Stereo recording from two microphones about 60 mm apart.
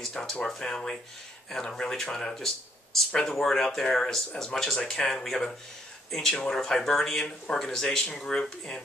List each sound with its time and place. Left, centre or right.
0.0 s speech: centre